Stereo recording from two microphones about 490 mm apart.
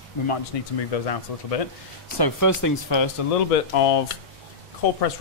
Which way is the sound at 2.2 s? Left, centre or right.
Left.